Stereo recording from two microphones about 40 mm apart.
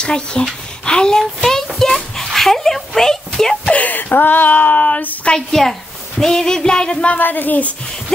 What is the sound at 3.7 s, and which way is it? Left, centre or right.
Speech, left.